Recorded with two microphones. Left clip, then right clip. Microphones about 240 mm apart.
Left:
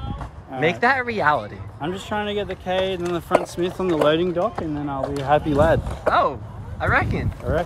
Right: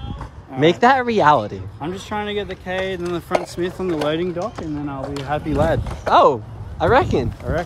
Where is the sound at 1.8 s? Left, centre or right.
Centre.